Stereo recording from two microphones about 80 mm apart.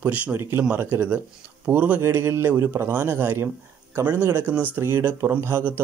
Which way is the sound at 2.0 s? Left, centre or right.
Right.